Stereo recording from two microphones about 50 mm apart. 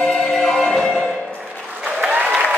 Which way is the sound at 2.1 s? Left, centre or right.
Right.